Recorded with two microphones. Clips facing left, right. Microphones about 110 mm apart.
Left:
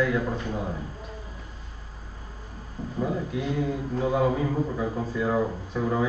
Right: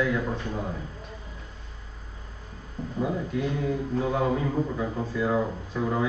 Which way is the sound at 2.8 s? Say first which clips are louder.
Even; 5° left (ahead or behind).